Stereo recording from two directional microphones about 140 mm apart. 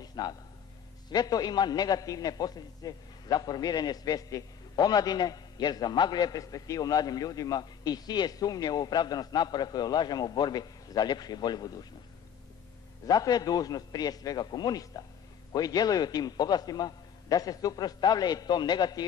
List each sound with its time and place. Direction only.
0.0 s a sound: 30° left (ahead or behind)
1.1 s a man's voice: 30° left (ahead or behind)
13.0 s a man's voice: 25° left (ahead or behind)